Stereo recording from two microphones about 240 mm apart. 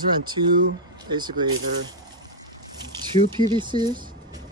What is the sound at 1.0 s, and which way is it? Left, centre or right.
Speech, centre.